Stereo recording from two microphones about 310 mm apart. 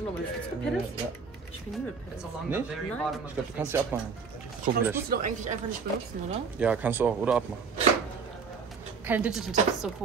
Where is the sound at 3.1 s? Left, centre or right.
Centre.